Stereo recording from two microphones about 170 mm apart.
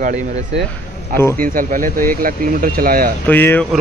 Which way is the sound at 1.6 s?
55° right (ahead or behind).